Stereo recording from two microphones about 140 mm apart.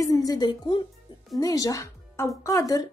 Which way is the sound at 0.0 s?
25° left (ahead or behind).